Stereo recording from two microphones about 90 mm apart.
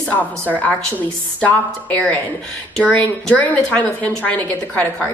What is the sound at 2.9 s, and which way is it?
A woman's voice, 15° left (ahead or behind).